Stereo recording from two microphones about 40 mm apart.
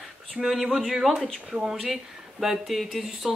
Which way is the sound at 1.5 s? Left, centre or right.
Centre.